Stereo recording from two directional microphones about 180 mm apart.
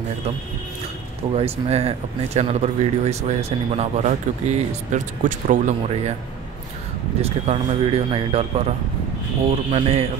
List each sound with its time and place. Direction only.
1.3 s speech: 35° right (ahead or behind)
7.2 s speech: 35° right (ahead or behind)